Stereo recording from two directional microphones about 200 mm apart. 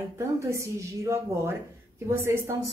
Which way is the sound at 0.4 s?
15° right (ahead or behind).